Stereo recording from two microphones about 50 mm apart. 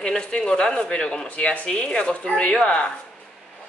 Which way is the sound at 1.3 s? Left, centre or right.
Left.